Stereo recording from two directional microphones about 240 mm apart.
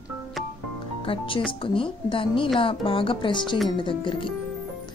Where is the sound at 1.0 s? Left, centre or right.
Left.